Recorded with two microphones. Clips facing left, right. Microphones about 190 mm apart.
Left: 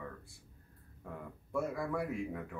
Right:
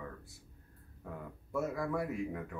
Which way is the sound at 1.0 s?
Centre (ahead or behind).